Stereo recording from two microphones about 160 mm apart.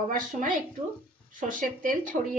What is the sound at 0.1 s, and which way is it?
A woman's voice, 55° right (ahead or behind).